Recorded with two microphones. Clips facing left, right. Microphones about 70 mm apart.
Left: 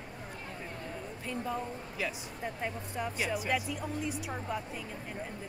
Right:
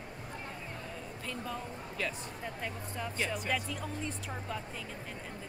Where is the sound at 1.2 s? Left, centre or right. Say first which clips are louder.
Left 4 dB; centre.